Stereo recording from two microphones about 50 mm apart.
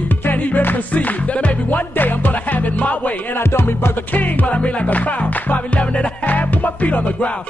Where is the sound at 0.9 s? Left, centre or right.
Left.